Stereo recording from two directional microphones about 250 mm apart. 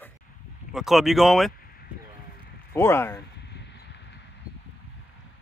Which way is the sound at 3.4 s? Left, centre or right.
Left.